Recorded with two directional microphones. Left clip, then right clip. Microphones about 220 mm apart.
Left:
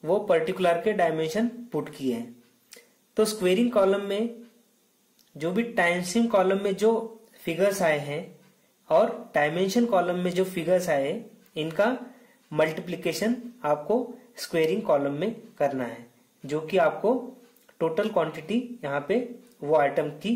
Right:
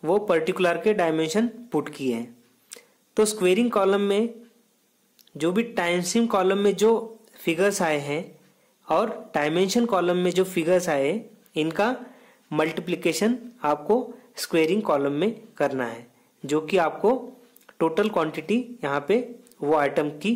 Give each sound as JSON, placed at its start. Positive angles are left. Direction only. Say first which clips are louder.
{"t": 0.0, "sound": "speech", "louder": "right 1 dB", "side_deg": -35}
{"t": 5.4, "sound": "speech", "louder": "even", "side_deg": -35}